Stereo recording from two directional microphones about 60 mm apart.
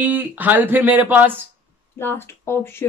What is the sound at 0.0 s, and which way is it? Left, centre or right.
Speech, right.